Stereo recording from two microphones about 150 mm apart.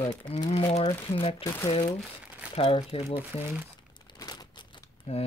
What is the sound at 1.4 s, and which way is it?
Speech, 20° left (ahead or behind).